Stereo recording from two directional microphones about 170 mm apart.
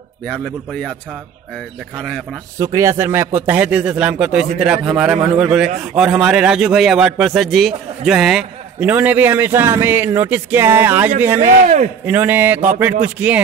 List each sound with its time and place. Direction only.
0.3 s a man's voice: 5° left (ahead or behind)
2.0 s a man's voice: 5° left (ahead or behind)
2.6 s a man's voice: 20° right (ahead or behind)
11.3 s a man's voice: 45° right (ahead or behind)
12.1 s speech: 10° right (ahead or behind)